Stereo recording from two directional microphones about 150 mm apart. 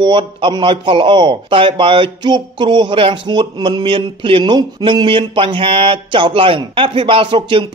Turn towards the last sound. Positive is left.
turn(degrees=-35)  # may be behind; listen again after turning